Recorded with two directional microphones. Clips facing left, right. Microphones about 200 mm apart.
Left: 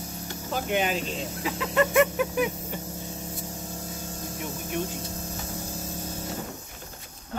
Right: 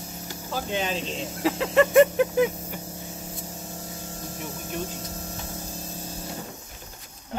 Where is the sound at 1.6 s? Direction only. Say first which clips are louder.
Right 5 dB; 30° right (ahead or behind).